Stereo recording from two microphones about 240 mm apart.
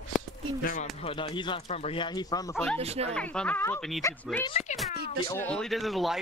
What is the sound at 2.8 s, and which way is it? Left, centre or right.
Speech, right.